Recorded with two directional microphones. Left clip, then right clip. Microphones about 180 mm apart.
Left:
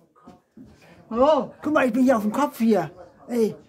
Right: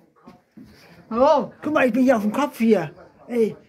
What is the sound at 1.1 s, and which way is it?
Speech, 15° right (ahead or behind).